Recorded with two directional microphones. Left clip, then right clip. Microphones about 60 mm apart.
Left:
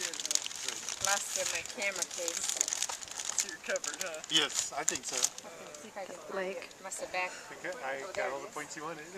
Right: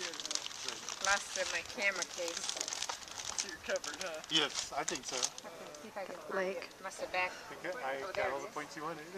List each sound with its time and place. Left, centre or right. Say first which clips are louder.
0.0 s speech: left 4 dB; left
7.0 s speech: even; left